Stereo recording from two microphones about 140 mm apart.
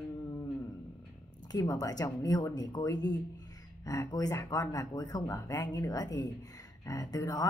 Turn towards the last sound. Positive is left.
turn(degrees=25)  # may be behind; listen again after turning